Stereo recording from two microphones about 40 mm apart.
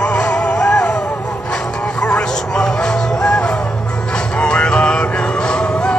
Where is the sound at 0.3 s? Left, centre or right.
Left.